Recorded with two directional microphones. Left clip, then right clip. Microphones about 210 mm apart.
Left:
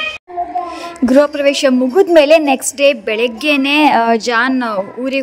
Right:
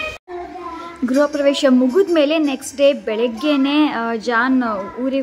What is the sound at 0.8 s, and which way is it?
A woman's voice, 30° left (ahead or behind).